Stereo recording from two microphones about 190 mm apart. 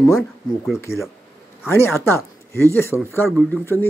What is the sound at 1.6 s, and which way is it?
Speech, 15° left (ahead or behind).